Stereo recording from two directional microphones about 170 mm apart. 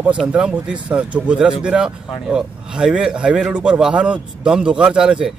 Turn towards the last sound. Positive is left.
turn(degrees=-5)  # may be behind; listen again after turning